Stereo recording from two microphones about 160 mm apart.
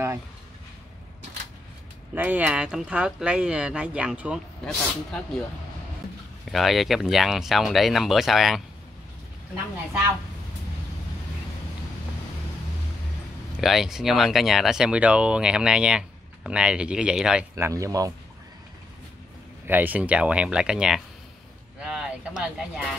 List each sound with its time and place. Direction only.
2.1 s speech: 10° right (ahead or behind)
6.4 s speech: centre (ahead or behind)
13.6 s speech: centre (ahead or behind)
17.6 s speech: 20° right (ahead or behind)
19.6 s speech: 10° right (ahead or behind)